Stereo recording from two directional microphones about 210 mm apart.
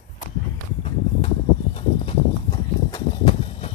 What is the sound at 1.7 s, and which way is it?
Clip-clop, 25° left (ahead or behind).